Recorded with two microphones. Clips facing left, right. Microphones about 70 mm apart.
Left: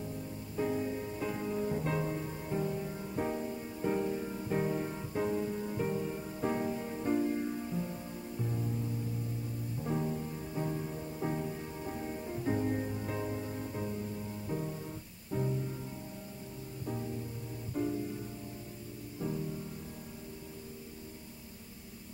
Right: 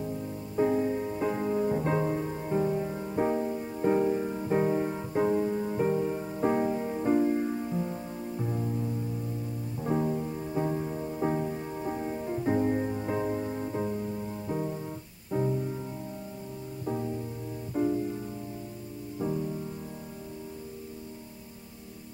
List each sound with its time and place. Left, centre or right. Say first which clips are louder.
0.6 s music: right 8 dB; right
9.8 s music: right 7 dB; right
16.8 s music: right 6 dB; right
19.1 s music: right 6 dB; right